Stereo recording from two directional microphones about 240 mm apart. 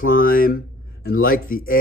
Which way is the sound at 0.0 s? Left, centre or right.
Left.